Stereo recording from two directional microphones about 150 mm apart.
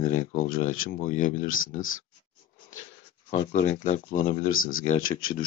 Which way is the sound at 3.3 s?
50° left (ahead or behind).